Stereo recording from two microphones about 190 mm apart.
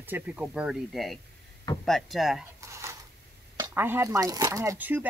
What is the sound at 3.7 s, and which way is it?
Speech, 10° right (ahead or behind).